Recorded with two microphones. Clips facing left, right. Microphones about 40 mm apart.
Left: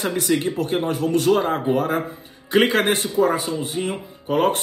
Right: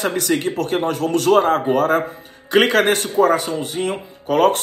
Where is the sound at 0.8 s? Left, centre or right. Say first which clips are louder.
Right 2 dB; right.